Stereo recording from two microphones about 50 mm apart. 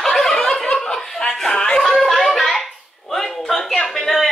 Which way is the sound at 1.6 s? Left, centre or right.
Centre.